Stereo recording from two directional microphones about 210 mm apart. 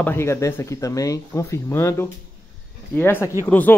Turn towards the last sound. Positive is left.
turn(degrees=10)  # may be behind; listen again after turning